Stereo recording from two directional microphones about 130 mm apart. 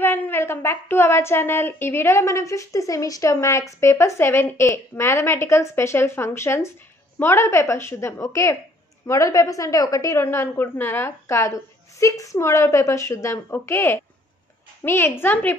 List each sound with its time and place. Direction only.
0.0 s a woman's voice: 15° left (ahead or behind)